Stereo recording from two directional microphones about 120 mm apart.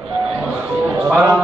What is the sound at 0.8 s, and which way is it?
Music, 15° right (ahead or behind).